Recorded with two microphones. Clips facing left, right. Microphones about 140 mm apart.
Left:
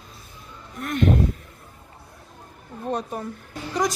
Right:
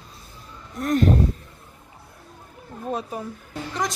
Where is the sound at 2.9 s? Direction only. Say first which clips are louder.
Left 1 dB; 5° right (ahead or behind).